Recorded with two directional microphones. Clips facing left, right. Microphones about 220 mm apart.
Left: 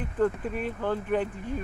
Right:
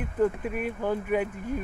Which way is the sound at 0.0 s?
10° right (ahead or behind).